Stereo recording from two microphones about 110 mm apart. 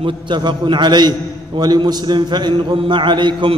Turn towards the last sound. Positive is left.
turn(degrees=-45)  # may be behind; listen again after turning